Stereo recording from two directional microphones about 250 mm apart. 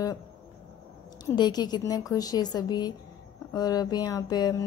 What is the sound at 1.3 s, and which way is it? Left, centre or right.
A woman's voice, centre.